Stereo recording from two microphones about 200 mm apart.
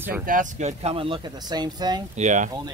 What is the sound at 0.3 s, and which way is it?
Speech, 40° right (ahead or behind).